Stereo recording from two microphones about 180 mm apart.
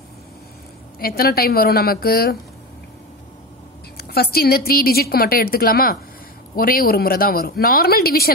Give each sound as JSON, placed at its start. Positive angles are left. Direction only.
{"t": 0.9, "sound": "a woman's voice", "side_deg": 55}
{"t": 3.9, "sound": "a woman's voice", "side_deg": 60}